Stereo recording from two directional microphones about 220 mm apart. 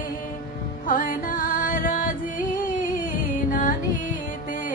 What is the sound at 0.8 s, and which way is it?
Music, 40° left (ahead or behind).